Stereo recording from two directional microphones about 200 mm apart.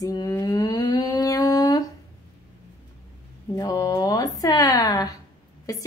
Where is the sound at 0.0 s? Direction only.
20° left (ahead or behind).